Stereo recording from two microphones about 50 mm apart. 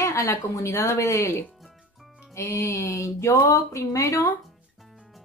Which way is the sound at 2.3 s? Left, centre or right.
Left.